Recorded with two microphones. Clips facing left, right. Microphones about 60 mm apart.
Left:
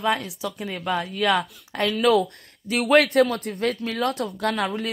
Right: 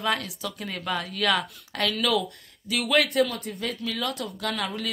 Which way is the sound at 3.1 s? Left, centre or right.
Left.